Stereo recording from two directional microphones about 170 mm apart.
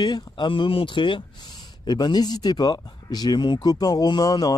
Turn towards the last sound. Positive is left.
turn(degrees=25)  # may be behind; listen again after turning